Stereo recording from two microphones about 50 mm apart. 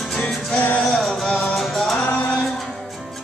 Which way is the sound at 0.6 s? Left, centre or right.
Left.